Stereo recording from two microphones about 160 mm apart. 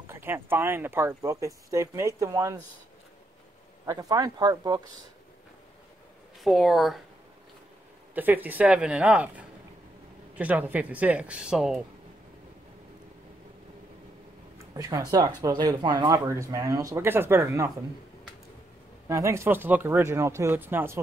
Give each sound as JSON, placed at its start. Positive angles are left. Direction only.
{"t": 0.1, "sound": "speech", "side_deg": -15}
{"t": 3.8, "sound": "speech", "side_deg": -25}
{"t": 6.4, "sound": "a woman's voice", "side_deg": 0}
{"t": 8.1, "sound": "speech", "side_deg": -10}
{"t": 14.8, "sound": "speech", "side_deg": -20}
{"t": 19.0, "sound": "speech", "side_deg": -20}